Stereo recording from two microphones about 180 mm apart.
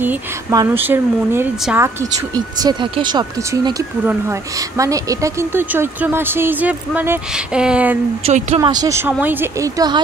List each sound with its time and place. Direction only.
0.0 s a sound: 10° right (ahead or behind)
0.6 s speech: 10° right (ahead or behind)
4.0 s speech: 10° right (ahead or behind)
8.2 s speech: 40° right (ahead or behind)
8.5 s speech: 20° right (ahead or behind)